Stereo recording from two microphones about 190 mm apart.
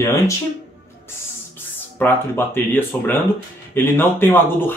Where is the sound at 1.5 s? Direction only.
10° left (ahead or behind).